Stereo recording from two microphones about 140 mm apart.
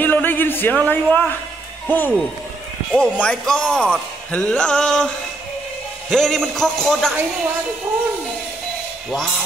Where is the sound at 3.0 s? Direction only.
5° left (ahead or behind).